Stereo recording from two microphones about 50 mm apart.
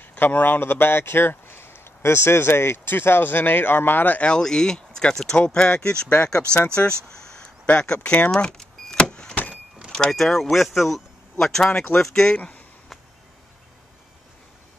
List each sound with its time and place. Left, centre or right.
0.0 s speech: left
4.3 s speech: centre
6.0 s speech: left
7.1 s a sound: centre
7.6 s speech: left
8.3 s vehicle: centre
10.1 s speech: centre
12.4 s speech: left